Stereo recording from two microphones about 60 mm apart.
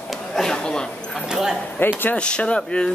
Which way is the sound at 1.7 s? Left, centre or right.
Left.